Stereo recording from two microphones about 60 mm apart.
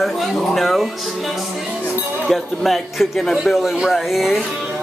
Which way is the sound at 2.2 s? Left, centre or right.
Centre.